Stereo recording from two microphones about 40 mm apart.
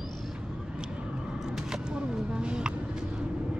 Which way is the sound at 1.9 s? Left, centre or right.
Centre.